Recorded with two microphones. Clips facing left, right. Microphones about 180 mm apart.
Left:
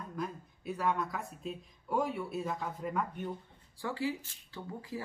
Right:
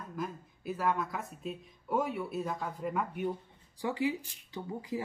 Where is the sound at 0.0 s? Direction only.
Centre (ahead or behind).